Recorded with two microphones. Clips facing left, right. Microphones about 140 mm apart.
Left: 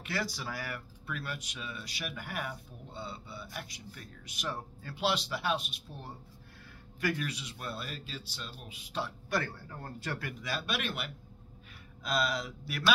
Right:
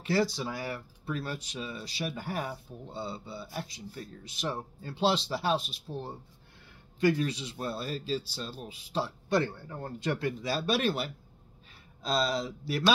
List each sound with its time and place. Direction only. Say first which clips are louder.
0.0 s speech: right 8 dB; 30° right (ahead or behind)